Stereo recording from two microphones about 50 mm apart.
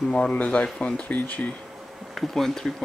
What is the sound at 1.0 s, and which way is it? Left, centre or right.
Speech, left.